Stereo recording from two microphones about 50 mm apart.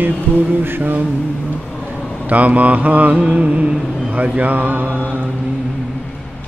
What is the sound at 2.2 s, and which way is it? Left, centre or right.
Mantra, right.